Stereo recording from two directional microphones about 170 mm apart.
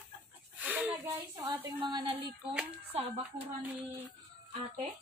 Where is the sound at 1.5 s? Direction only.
10° right (ahead or behind).